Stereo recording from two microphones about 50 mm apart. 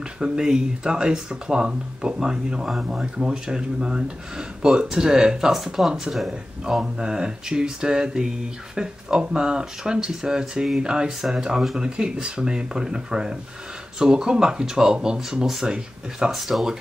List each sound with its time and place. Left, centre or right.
0.2 s speech: centre
5.5 s speech: centre
11.1 s speech: centre
11.8 s speech: centre